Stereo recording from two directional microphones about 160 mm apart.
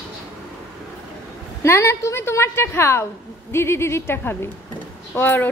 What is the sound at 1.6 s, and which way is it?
A woman's voice, 15° left (ahead or behind).